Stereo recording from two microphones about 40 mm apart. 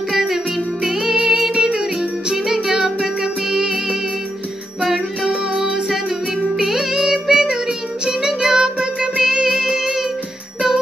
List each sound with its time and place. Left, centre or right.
0.1 s music: centre
2.3 s music: centre
5.2 s music: right
6.5 s music: centre